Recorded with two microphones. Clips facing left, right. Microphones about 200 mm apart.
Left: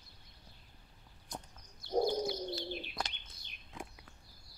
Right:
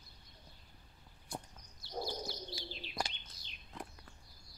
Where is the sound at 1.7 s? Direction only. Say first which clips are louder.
Left 10 dB; 50° left (ahead or behind).